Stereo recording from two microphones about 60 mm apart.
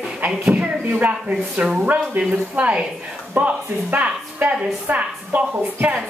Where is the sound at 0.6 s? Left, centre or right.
Right.